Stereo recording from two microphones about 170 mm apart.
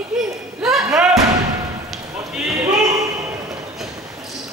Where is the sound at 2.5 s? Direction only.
20° right (ahead or behind).